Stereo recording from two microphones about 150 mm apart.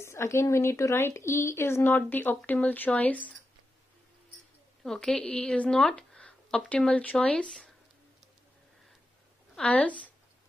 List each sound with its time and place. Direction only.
0.0 s speech: 20° left (ahead or behind)
4.8 s speech: 5° left (ahead or behind)
9.6 s speech: 10° left (ahead or behind)